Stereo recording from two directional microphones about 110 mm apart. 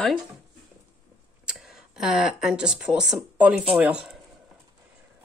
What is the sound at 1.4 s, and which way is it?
Speech, centre (ahead or behind).